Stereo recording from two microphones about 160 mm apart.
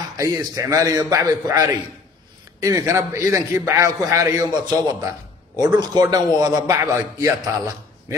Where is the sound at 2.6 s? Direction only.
20° right (ahead or behind).